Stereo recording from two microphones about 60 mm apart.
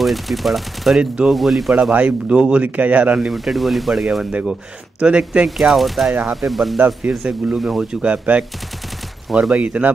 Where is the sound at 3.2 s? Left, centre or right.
Centre.